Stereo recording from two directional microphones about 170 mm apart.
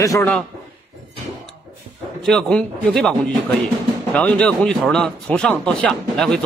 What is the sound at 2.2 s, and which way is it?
A man's voice, 5° left (ahead or behind).